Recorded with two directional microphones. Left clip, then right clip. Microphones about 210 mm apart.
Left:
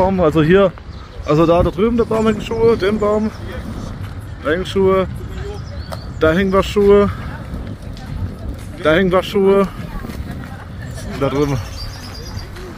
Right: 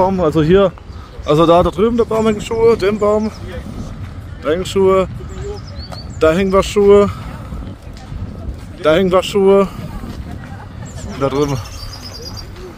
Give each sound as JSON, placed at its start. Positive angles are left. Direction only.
{"t": 0.0, "sound": "speech", "side_deg": -10}
{"t": 1.2, "sound": "speech", "side_deg": -20}
{"t": 4.5, "sound": "speech", "side_deg": -15}
{"t": 6.1, "sound": "speech", "side_deg": -15}
{"t": 8.8, "sound": "speech", "side_deg": -15}
{"t": 11.1, "sound": "speech", "side_deg": -15}